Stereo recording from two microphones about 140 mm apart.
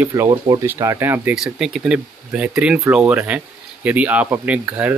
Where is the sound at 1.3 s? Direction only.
5° right (ahead or behind).